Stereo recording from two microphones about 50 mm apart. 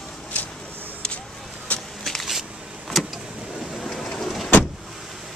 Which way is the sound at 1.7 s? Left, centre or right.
Left.